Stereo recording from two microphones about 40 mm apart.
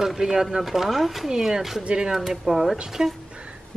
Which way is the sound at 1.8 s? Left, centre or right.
Right.